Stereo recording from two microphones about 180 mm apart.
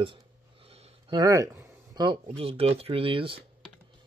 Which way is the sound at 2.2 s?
35° right (ahead or behind).